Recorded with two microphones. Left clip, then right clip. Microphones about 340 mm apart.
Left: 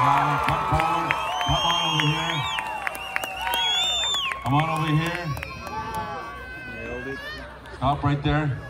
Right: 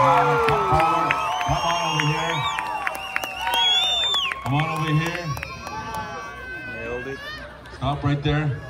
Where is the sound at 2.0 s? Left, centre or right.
Right.